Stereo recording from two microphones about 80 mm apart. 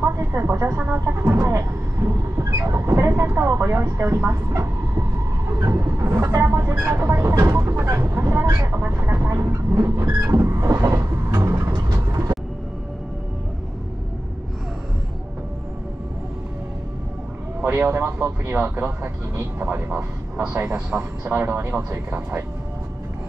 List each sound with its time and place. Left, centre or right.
0.3 s speech: right
3.3 s speech: right
5.5 s vehicle: right
6.5 s speech: right
7.1 s speech: right
11.7 s vehicle: right
17.6 s speech: right